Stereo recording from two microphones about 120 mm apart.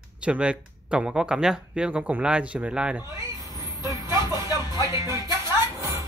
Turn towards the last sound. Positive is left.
turn(degrees=-25)  # may be behind; listen again after turning